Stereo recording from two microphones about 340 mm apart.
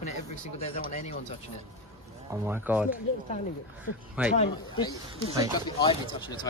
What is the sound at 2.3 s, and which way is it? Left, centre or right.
Speech, centre.